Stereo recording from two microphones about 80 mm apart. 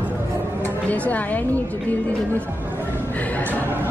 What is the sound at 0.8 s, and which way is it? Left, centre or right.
Speech, centre.